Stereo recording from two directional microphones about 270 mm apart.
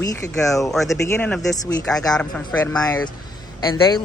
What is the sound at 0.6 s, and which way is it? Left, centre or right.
Speech, centre.